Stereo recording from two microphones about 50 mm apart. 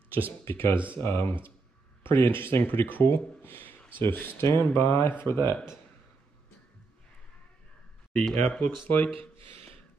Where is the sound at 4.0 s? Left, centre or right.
Left.